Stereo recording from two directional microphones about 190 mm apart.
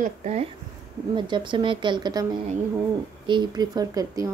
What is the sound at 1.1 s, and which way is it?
A woman's voice, 25° right (ahead or behind).